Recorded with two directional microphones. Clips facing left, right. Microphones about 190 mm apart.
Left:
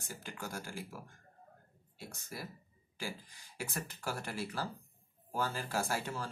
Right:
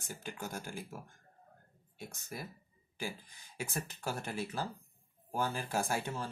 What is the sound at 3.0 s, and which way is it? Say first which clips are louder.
Speech: right 1 dB; 20° right (ahead or behind).